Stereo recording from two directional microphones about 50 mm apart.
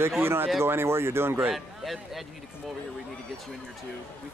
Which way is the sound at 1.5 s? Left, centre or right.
Centre.